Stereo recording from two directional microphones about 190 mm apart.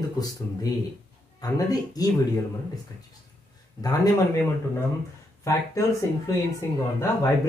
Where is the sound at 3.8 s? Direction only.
20° left (ahead or behind).